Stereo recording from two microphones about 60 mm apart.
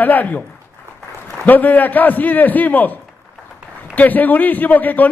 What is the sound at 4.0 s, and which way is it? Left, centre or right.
A man's voice, left.